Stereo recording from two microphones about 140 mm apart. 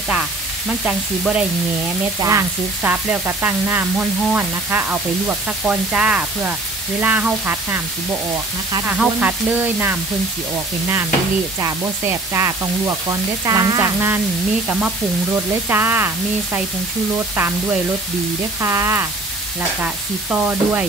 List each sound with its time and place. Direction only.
0.7 s frying: centre (ahead or behind)
2.2 s frying: 15° right (ahead or behind)
11.6 s sizzle: 15° right (ahead or behind)
15.3 s frying: 15° right (ahead or behind)
18.6 s sizzle: 20° right (ahead or behind)
19.8 s frying: 10° right (ahead or behind)